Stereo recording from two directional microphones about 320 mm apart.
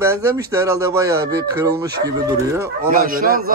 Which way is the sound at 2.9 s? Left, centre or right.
Right.